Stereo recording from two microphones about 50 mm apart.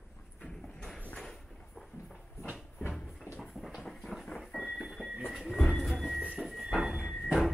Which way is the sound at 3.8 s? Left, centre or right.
Centre.